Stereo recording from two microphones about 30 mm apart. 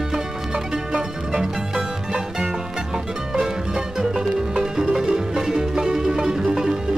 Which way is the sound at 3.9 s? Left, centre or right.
Centre.